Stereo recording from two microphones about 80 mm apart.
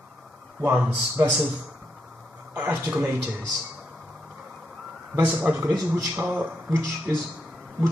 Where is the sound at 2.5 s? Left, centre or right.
Centre.